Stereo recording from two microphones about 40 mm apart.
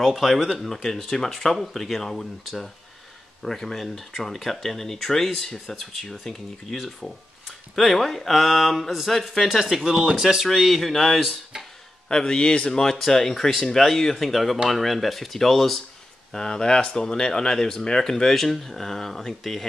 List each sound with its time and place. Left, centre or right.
0.0 s speech: centre
0.6 s speech: centre
10.5 s speech: centre
12.1 s speech: centre
16.3 s speech: centre